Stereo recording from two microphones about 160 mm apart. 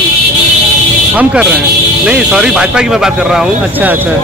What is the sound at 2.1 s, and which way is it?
Speech, 5° right (ahead or behind).